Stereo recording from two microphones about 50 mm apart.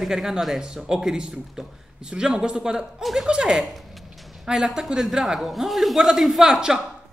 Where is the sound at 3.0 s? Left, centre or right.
Centre.